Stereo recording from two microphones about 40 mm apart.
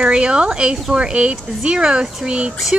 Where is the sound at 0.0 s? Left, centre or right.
Right.